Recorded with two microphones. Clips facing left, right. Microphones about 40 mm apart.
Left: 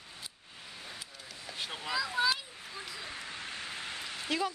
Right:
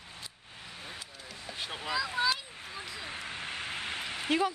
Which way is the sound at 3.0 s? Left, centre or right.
Right.